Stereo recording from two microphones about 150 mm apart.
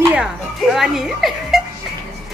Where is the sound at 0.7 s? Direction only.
5° right (ahead or behind).